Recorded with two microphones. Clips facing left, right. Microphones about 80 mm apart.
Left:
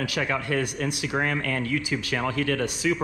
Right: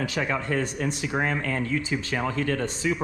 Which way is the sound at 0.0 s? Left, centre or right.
Left.